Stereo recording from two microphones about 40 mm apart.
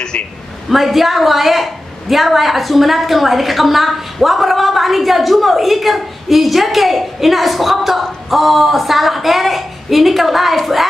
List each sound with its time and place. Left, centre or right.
0.7 s a woman's voice: centre